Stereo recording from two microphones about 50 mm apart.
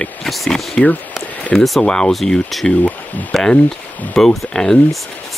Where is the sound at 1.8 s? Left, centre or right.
Centre.